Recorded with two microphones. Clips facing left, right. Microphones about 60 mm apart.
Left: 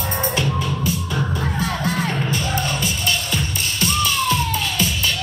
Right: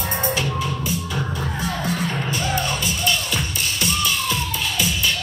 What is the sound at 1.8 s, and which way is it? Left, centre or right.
Music, left.